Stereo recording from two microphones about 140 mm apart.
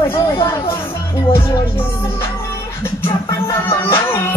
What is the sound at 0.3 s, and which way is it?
Speech, 20° left (ahead or behind).